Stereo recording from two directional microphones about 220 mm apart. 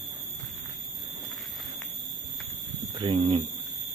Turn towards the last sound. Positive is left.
turn(degrees=-25)  # may be behind; listen again after turning